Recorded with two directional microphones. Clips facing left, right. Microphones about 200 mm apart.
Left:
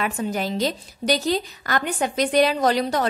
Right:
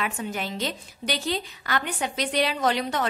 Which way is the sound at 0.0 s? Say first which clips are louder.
Left 5 dB; 40° left (ahead or behind).